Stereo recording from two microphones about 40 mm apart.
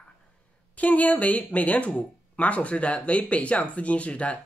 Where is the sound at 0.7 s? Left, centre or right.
Left.